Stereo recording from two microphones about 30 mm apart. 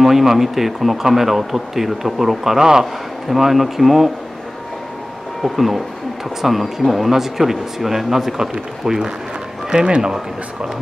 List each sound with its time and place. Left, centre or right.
0.0 s speech: centre
5.4 s speech: centre
9.8 s speech: right